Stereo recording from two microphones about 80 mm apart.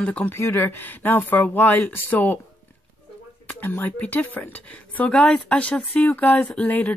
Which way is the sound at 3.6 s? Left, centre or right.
Left.